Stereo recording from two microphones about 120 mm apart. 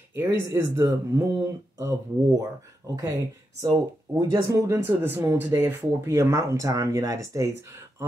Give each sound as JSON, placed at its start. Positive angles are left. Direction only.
{"t": 0.1, "sound": "speech", "side_deg": -20}